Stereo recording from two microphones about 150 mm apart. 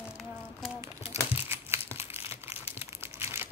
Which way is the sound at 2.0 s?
45° left (ahead or behind).